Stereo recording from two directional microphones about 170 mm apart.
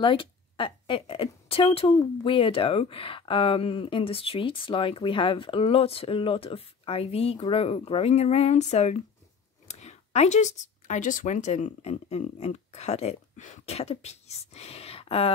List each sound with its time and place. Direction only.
0.0 s speech: 30° left (ahead or behind)